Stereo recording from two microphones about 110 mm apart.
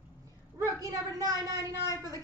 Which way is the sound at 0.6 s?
30° right (ahead or behind).